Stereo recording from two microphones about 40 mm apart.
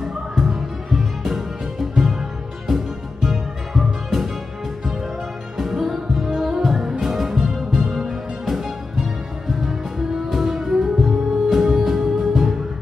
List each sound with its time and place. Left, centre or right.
0.0 s music: centre
5.6 s music: centre
6.3 s music: centre